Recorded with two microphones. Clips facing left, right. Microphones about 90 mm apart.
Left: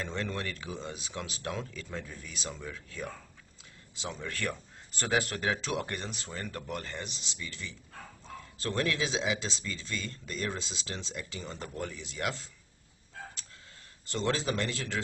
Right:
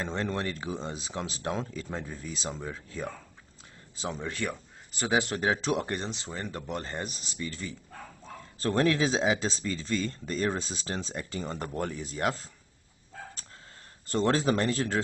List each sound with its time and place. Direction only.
0.0 s speech: 30° right (ahead or behind)
4.2 s speech: 20° right (ahead or behind); by 12.4 s 40° right (ahead or behind)
14.1 s speech: 40° right (ahead or behind)